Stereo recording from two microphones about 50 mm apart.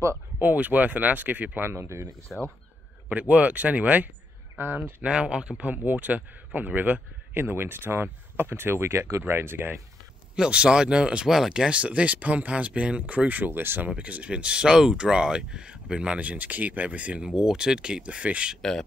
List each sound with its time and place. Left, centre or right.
0.4 s speech: right
1.7 s speech: right
3.1 s speech: right
5.0 s speech: right
5.7 s speech: right
7.3 s speech: right
9.3 s speech: right
10.3 s speech: centre
11.2 s speech: centre
11.7 s speech: right
13.8 s speech: right
17.2 s speech: centre
18.6 s speech: centre